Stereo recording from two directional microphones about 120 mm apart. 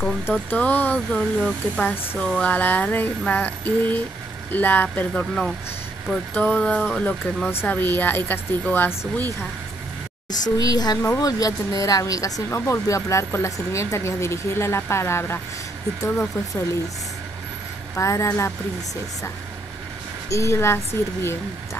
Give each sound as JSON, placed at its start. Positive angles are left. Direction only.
{"t": 0.0, "sound": "speech", "side_deg": 10}
{"t": 7.5, "sound": "speech", "side_deg": 15}
{"t": 10.6, "sound": "speech", "side_deg": 35}
{"t": 17.9, "sound": "speech", "side_deg": 25}
{"t": 20.2, "sound": "speech", "side_deg": 25}